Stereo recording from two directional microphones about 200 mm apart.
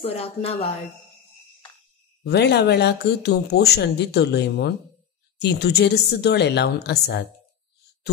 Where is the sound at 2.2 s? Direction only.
55° left (ahead or behind).